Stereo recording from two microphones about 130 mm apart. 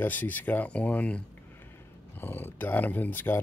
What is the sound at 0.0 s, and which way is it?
Speech, 15° left (ahead or behind).